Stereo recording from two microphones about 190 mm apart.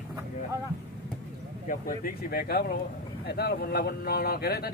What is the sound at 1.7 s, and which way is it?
Speech, 50° left (ahead or behind).